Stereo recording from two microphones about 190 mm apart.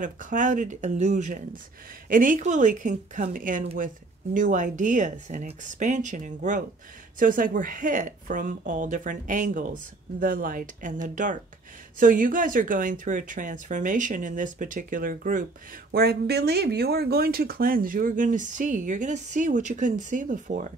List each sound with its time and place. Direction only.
0.0 s a woman's voice: 45° right (ahead or behind)